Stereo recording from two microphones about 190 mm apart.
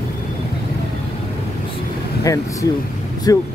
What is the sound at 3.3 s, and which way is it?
Speech, 20° left (ahead or behind).